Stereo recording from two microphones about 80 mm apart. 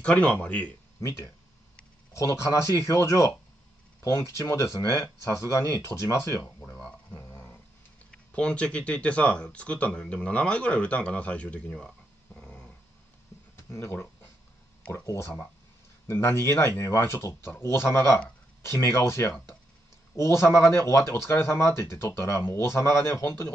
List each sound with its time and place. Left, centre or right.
0.0 s speech: centre
1.0 s speech: left
6.8 s a sound: centre
8.1 s speech: centre
12.4 s dog: centre
13.6 s speech: left
15.0 s speech: left